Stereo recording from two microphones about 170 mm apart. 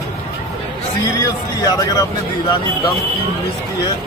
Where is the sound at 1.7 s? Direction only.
20° left (ahead or behind).